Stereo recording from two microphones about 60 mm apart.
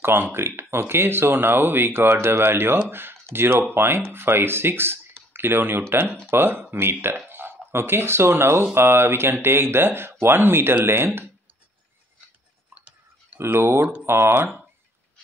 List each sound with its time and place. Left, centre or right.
0.0 s speech: right
6.0 s speech: centre
6.3 s speech: right
12.7 s a sound: right
13.4 s speech: right